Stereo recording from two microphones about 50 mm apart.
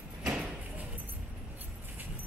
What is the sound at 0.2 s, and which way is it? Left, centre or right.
Sliding door, centre.